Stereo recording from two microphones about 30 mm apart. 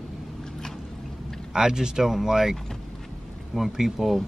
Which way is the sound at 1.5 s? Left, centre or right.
Right.